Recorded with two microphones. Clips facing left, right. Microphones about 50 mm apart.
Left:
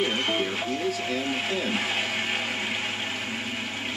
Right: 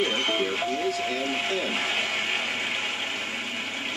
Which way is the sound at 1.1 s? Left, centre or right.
Centre.